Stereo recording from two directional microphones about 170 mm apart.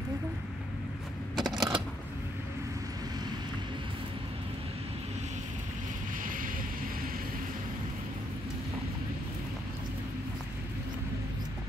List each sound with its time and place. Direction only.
1.3 s typewriter: centre (ahead or behind)
6.2 s vehicle: 55° right (ahead or behind)